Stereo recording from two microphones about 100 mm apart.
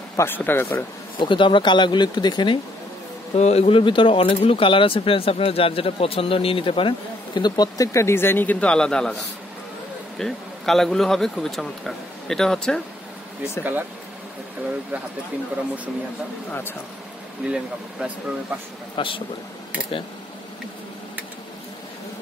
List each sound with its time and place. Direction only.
0.1 s speech: 25° left (ahead or behind)
1.2 s speech: 55° left (ahead or behind)
3.3 s speech: 90° left; by 12.8 s 5° left (ahead or behind)
13.4 s speech: 20° right (ahead or behind)
17.5 s speech: 10° right (ahead or behind)
18.9 s speech: 60° left (ahead or behind)